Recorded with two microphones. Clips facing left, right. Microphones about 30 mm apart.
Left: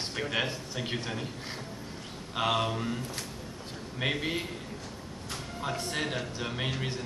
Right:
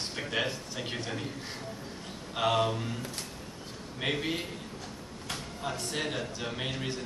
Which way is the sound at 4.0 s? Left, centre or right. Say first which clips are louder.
Left 1 dB; centre.